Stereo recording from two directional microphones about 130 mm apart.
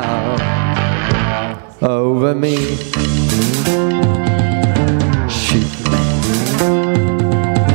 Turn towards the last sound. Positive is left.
turn(degrees=5)  # may be behind; listen again after turning